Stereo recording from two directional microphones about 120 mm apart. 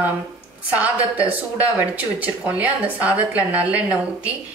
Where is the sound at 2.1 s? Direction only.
15° right (ahead or behind).